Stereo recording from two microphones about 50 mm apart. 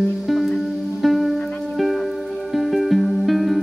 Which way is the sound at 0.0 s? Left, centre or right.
Centre.